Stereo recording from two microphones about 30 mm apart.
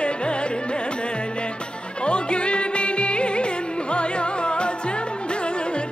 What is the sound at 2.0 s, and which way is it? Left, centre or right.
Music, left.